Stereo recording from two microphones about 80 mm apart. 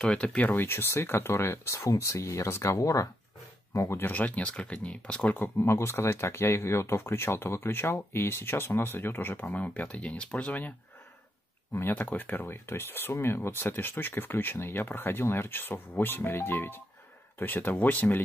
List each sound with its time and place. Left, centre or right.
0.0 s speech: centre; by 1.8 s left
1.8 s speech: left
4.0 s speech: centre
11.7 s speech: left